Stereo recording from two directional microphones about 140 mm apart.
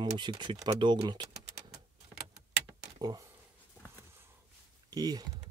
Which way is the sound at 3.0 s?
30° right (ahead or behind).